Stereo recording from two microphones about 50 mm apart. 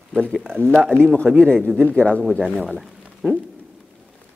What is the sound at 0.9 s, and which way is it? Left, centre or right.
Speech, right.